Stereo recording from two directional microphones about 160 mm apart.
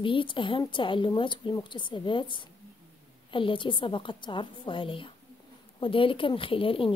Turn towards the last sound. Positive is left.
turn(degrees=35)  # may be behind; listen again after turning